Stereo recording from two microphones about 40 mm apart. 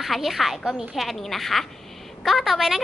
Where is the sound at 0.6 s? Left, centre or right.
Centre.